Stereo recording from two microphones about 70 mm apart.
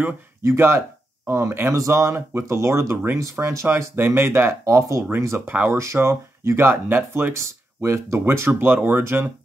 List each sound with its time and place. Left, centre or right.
0.4 s speech: right
7.3 s speech: right